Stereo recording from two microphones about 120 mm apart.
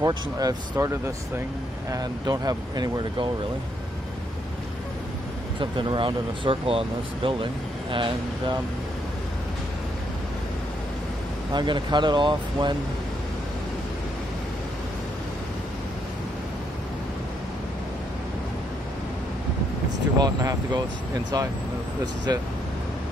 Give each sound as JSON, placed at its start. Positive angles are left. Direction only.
{"t": 0.0, "sound": "speech", "side_deg": -30}
{"t": 5.6, "sound": "speech", "side_deg": -45}
{"t": 11.5, "sound": "speech", "side_deg": -40}
{"t": 20.2, "sound": "speech", "side_deg": -35}
{"t": 22.0, "sound": "speech", "side_deg": -35}